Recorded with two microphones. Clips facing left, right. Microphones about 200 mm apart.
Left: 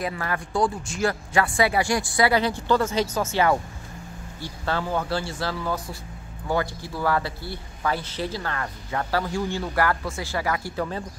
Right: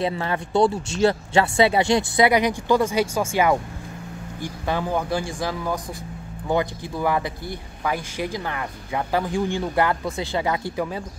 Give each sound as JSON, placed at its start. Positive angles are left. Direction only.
{"t": 0.0, "sound": "speech", "side_deg": -25}